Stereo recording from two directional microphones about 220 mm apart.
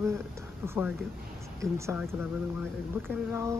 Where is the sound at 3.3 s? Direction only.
15° right (ahead or behind).